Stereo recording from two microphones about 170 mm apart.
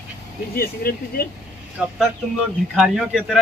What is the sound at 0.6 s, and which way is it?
Speech, 60° left (ahead or behind).